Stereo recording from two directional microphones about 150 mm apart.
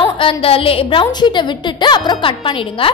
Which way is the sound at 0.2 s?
35° left (ahead or behind).